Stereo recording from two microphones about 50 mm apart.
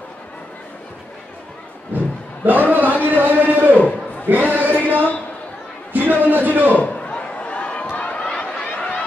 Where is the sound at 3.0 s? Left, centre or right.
Right.